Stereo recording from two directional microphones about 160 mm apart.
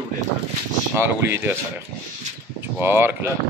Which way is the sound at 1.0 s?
15° right (ahead or behind).